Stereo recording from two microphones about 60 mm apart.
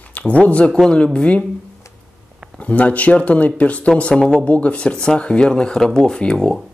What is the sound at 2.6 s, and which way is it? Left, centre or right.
Speech, left.